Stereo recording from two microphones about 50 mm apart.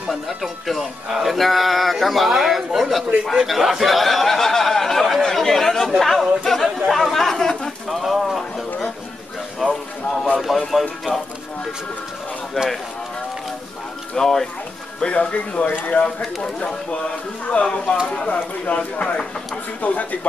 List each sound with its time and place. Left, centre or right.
0.1 s a man's voice: centre
3.3 s a sound: centre
8.0 s a sound: centre
9.6 s a sound: centre
10.7 s speech: centre
14.1 s speech: centre
15.0 s speech: left
16.0 s speech: left
17.5 s speech: left